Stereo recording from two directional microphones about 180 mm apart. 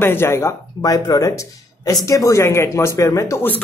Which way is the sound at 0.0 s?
10° left (ahead or behind).